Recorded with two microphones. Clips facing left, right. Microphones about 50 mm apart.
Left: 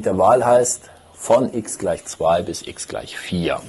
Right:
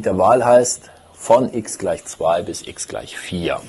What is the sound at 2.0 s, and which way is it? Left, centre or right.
Speech, centre.